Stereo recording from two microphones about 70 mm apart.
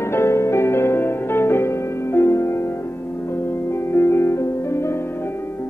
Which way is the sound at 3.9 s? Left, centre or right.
Left.